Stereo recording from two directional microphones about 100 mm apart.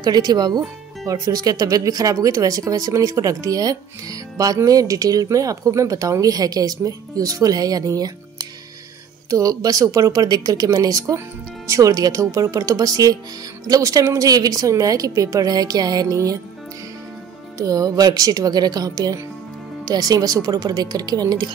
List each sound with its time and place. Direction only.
0.0 s speech: 45° right (ahead or behind)
17.6 s speech: 35° right (ahead or behind)